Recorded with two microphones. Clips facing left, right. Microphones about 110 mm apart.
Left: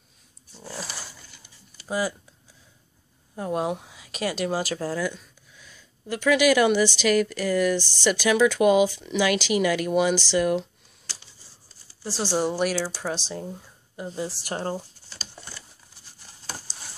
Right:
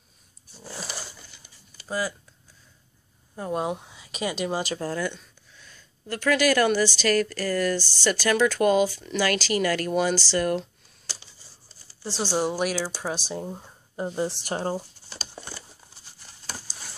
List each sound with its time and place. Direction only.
1.9 s speech: 20° left (ahead or behind)
3.3 s speech: centre (ahead or behind)
12.0 s speech: 5° left (ahead or behind)
13.0 s speech: 10° right (ahead or behind)
13.5 s speech: 35° right (ahead or behind)
14.3 s speech: 25° right (ahead or behind)
15.3 s crumpling: 25° right (ahead or behind)
16.4 s patter: 20° left (ahead or behind)